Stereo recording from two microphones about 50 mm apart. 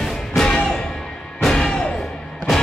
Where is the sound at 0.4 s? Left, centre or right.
Centre.